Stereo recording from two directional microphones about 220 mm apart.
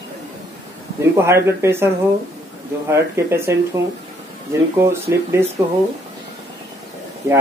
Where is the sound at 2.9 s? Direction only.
10° right (ahead or behind).